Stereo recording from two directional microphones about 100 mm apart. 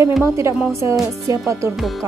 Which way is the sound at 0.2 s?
30° right (ahead or behind).